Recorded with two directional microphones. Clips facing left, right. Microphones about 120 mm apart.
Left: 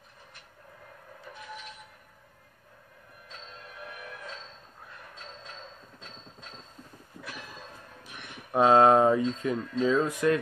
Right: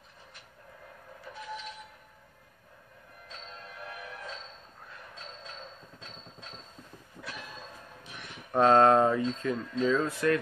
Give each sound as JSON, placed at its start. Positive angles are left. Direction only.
{"t": 8.5, "sound": "speech", "side_deg": 10}